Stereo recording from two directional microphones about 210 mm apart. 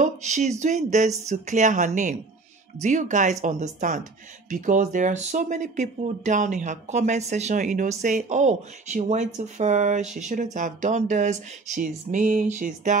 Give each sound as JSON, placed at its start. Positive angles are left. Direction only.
{"t": 0.0, "sound": "speech", "side_deg": -35}